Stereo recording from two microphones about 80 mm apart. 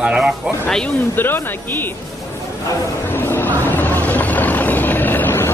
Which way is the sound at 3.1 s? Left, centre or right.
Left.